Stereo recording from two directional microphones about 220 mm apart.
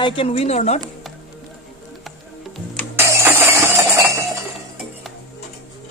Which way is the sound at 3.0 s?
10° right (ahead or behind).